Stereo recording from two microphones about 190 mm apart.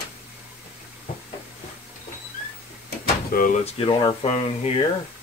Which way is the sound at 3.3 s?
50° left (ahead or behind).